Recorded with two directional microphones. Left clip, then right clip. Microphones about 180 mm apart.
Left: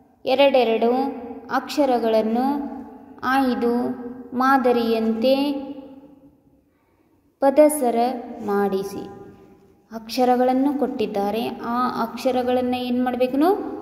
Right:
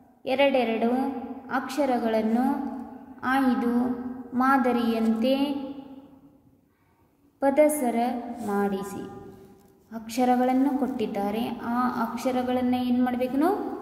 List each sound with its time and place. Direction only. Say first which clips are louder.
0.2 s a woman's voice: left 6 dB; 20° left (ahead or behind)
7.3 s a woman's voice: left 6 dB; 15° left (ahead or behind)